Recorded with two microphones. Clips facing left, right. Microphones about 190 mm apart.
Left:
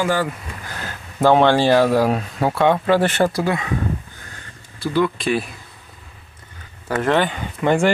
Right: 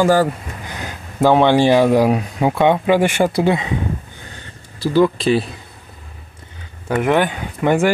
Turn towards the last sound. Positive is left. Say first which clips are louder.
# right 1 dB
turn(degrees=-10)  # may be behind; listen again after turning